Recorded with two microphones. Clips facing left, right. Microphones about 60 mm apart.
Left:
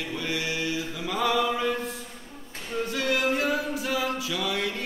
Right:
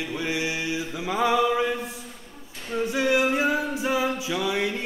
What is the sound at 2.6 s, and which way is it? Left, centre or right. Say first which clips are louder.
A capella: right 4 dB; centre.